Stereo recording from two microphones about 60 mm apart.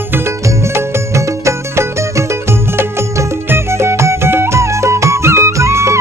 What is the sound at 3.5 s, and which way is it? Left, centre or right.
Music, right.